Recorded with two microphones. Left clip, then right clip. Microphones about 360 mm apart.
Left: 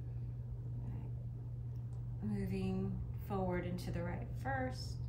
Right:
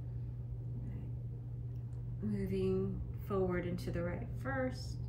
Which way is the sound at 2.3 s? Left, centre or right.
Centre.